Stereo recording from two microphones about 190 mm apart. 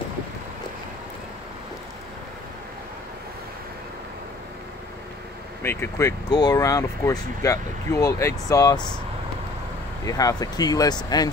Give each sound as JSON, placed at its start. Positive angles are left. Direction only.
{"t": 5.6, "sound": "speech", "side_deg": 10}
{"t": 10.0, "sound": "speech", "side_deg": 20}